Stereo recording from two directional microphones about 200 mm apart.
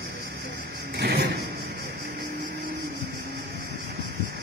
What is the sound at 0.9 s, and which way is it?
Sliding door, 55° right (ahead or behind).